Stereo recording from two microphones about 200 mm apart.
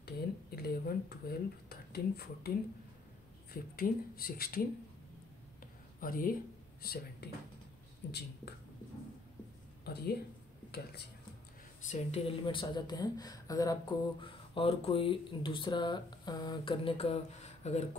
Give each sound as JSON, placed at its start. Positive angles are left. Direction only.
{"t": 0.0, "sound": "speech", "side_deg": 50}
{"t": 3.7, "sound": "speech", "side_deg": 50}
{"t": 5.9, "sound": "speech", "side_deg": 45}
{"t": 7.2, "sound": "speech", "side_deg": 55}
{"t": 9.8, "sound": "speech", "side_deg": 50}
{"t": 11.9, "sound": "a woman's voice", "side_deg": 30}